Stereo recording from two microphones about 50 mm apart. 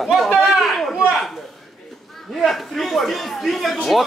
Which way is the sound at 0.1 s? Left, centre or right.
Centre.